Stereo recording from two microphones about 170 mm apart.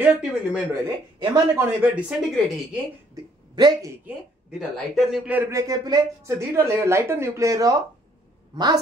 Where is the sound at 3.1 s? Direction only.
25° right (ahead or behind).